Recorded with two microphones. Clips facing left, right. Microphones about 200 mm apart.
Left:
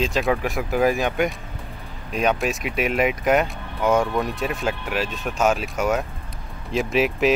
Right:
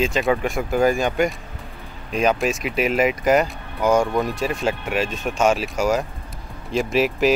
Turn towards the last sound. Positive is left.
turn(degrees=0)  # may be behind; listen again after turning